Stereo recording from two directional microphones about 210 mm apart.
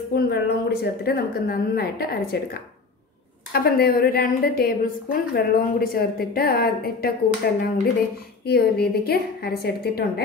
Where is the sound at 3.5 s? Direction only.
45° left (ahead or behind).